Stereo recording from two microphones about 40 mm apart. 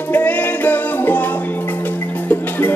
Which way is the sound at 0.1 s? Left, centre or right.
Left.